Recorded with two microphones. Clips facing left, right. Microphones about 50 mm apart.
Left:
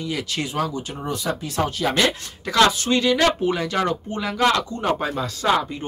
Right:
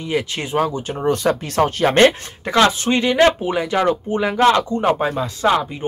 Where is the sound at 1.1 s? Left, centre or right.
Right.